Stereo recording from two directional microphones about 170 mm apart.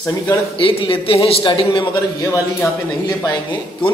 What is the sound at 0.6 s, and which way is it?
A man's voice, 30° left (ahead or behind).